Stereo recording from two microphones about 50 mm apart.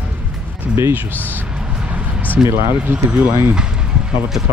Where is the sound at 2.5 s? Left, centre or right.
Right.